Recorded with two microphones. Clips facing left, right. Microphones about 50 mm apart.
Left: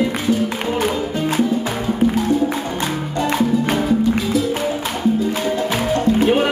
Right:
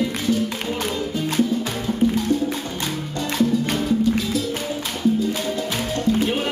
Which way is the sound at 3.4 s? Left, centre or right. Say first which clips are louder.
Left 1 dB; centre.